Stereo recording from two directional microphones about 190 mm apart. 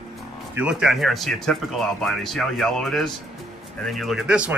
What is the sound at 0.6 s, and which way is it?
Speech, 5° right (ahead or behind).